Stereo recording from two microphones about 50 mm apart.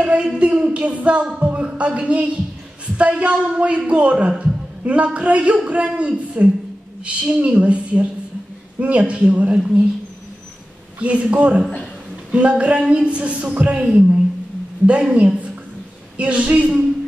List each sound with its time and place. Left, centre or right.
0.0 s a man's voice: right
11.0 s speech: right